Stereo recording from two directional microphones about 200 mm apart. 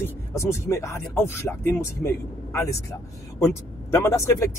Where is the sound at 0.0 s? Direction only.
15° left (ahead or behind).